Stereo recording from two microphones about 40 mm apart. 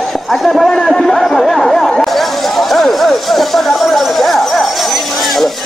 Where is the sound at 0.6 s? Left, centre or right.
Centre.